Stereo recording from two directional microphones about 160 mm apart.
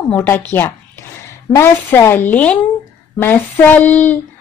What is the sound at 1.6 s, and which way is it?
A woman's voice, 15° left (ahead or behind).